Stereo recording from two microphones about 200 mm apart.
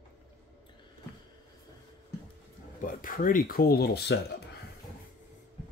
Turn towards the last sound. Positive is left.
turn(degrees=55)  # may be behind; listen again after turning